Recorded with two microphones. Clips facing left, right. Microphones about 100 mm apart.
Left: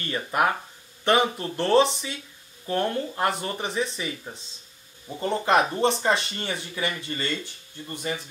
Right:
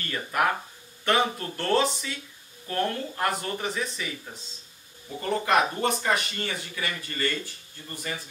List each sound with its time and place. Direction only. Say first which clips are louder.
0.0 s speech: left 2 dB; 20° left (ahead or behind)